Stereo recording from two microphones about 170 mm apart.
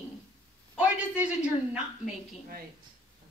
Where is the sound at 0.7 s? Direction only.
5° right (ahead or behind).